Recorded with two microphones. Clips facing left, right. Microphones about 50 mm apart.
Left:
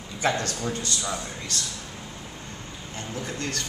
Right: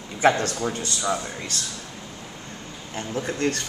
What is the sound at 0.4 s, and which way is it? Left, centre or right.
Speech, right.